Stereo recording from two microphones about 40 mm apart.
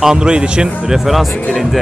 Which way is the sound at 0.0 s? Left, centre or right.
Centre.